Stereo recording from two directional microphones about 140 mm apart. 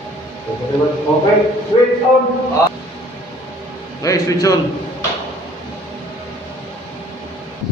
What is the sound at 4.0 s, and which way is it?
Mantra, 25° left (ahead or behind).